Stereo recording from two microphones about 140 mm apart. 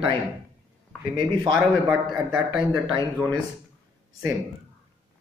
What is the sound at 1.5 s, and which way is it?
Speech, 5° right (ahead or behind).